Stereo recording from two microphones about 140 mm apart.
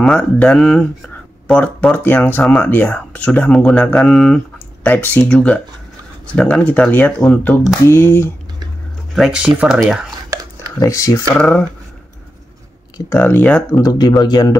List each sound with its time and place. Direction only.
0.0 s speech: 5° left (ahead or behind)
9.1 s speech: 5° right (ahead or behind)
10.8 s speech: 25° left (ahead or behind)
11.3 s speech: 5° left (ahead or behind)
13.1 s speech: 15° left (ahead or behind)
13.8 s speech: 30° left (ahead or behind)